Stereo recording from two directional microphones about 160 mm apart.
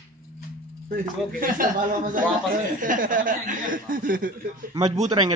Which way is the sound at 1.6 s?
60° right (ahead or behind).